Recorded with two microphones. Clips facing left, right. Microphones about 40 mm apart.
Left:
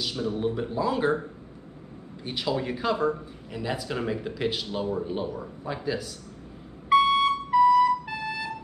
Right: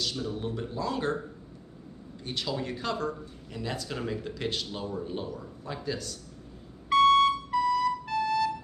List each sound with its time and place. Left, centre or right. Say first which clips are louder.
0.0 s a man's voice: left 5 dB; centre
2.2 s a man's voice: left 4 dB; centre
6.9 s music: even; centre